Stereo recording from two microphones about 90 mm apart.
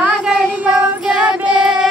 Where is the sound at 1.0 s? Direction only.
10° right (ahead or behind).